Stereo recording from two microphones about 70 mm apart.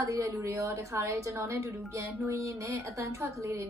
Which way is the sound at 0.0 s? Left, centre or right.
Right.